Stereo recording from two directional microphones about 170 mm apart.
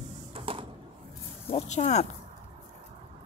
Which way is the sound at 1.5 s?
40° left (ahead or behind).